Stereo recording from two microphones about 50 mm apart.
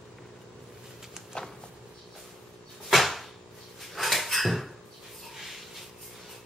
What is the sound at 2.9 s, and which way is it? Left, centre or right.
Cupboard open or close, centre.